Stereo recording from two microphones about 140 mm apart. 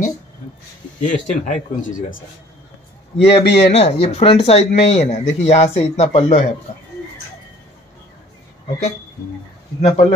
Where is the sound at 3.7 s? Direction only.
50° left (ahead or behind).